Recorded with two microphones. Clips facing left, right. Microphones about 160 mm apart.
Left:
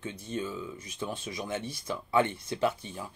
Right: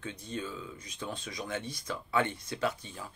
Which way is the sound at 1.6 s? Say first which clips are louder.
Left 3 dB; 10° left (ahead or behind).